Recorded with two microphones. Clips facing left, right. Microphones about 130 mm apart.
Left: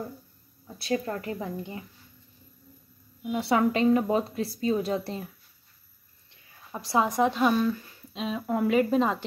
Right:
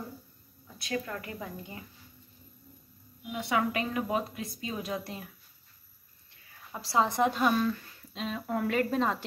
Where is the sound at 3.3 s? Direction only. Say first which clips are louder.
Left 6 dB; 35° left (ahead or behind).